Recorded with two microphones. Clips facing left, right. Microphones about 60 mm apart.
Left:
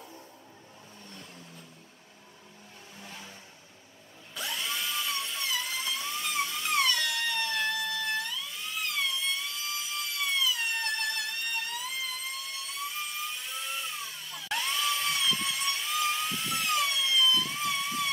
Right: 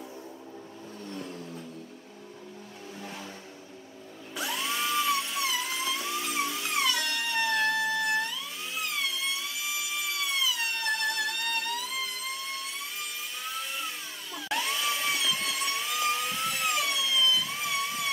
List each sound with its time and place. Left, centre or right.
4.4 s dental drill: centre
7.0 s music: centre
14.3 s a sound: centre